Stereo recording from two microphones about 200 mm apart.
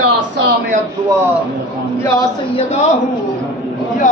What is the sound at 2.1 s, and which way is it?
Speech, 30° left (ahead or behind).